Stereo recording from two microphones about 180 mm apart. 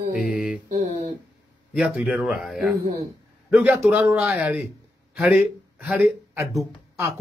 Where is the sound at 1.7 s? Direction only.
Centre (ahead or behind).